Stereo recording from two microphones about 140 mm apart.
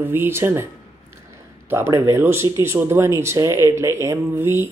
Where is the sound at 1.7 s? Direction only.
20° right (ahead or behind).